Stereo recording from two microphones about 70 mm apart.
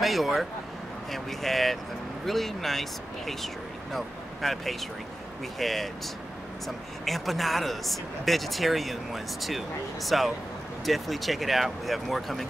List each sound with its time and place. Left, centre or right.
0.0 s vehicle: centre
1.1 s speech: centre
7.1 s speech: centre